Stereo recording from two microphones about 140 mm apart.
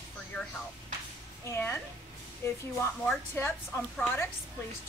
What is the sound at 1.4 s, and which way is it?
Speech, 20° left (ahead or behind).